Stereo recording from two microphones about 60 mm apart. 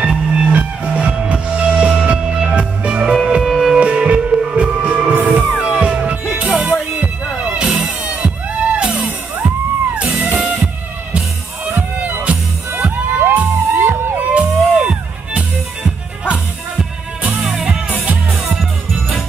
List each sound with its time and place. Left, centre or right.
0.0 s music: centre
5.7 s music: centre
7.4 s music: centre
12.3 s music: right
14.3 s music: centre